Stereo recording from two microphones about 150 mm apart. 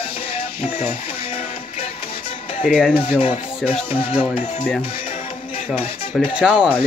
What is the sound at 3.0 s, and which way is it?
Speech, 40° left (ahead or behind).